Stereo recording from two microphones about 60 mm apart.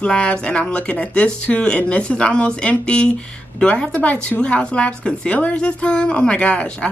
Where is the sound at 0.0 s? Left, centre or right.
Centre.